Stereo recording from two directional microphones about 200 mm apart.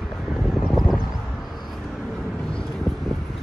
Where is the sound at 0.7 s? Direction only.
Centre (ahead or behind).